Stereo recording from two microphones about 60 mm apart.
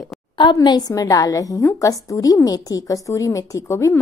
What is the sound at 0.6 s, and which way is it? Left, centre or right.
A woman's voice, left.